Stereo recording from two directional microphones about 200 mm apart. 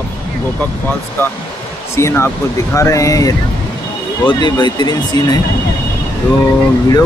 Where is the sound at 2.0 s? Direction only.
15° left (ahead or behind).